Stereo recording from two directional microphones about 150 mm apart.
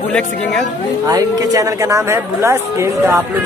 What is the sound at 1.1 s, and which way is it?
Speech, 25° right (ahead or behind).